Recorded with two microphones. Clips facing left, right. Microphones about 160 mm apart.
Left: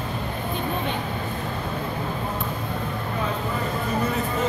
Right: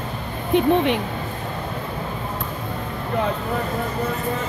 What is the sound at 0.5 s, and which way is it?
Speech, 80° right.